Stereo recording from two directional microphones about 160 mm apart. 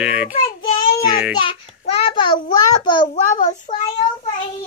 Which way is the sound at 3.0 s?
50° left (ahead or behind).